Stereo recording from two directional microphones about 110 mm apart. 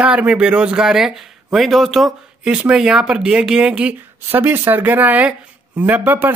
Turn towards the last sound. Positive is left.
turn(degrees=-15)  # may be behind; listen again after turning